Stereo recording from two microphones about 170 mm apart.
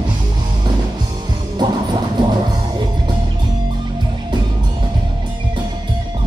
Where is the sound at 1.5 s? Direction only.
25° right (ahead or behind).